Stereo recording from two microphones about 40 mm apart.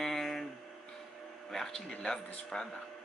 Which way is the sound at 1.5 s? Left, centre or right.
Centre.